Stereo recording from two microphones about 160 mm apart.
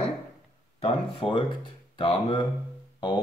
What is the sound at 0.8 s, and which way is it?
Speech, 35° left (ahead or behind).